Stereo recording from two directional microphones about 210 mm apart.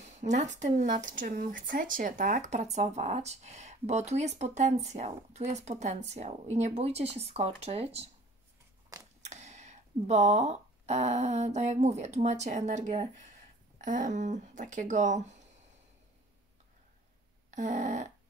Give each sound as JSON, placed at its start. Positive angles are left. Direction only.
{"t": 0.0, "sound": "speech", "side_deg": -35}
{"t": 9.2, "sound": "speech", "side_deg": -35}
{"t": 17.5, "sound": "a sound", "side_deg": -35}